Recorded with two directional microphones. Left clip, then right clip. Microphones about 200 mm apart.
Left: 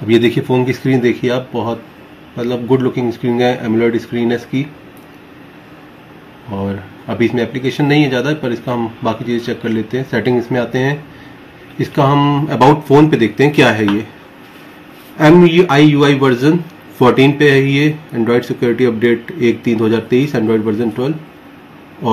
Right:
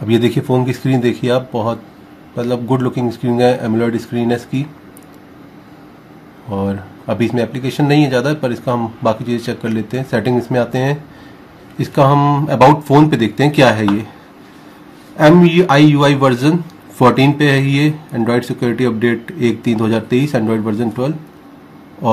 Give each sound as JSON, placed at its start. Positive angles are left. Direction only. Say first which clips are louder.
{"t": 0.1, "sound": "speech", "louder": "left 2 dB", "side_deg": -55}
{"t": 6.6, "sound": "speech", "louder": "even", "side_deg": -55}
{"t": 15.1, "sound": "speech", "louder": "left 1 dB", "side_deg": -55}